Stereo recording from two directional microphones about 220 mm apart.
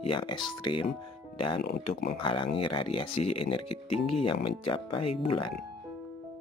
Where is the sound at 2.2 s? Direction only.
25° left (ahead or behind).